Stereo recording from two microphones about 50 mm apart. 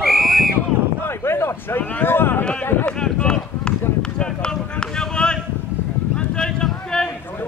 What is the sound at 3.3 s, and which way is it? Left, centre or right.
Run, centre.